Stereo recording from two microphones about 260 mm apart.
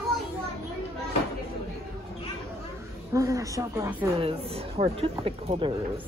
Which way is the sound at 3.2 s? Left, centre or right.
Centre.